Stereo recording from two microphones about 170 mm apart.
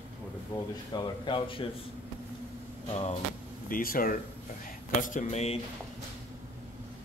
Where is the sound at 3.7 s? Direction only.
55° left (ahead or behind); by 5.6 s 40° left (ahead or behind).